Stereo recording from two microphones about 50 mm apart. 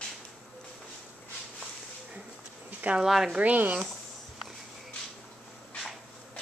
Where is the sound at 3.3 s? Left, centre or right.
Right.